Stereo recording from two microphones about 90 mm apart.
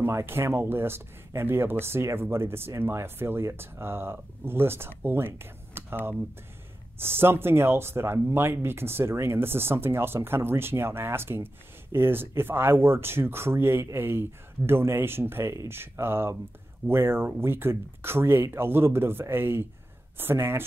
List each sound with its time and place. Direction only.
0.0 s speech: 30° right (ahead or behind)
7.0 s speech: 25° right (ahead or behind)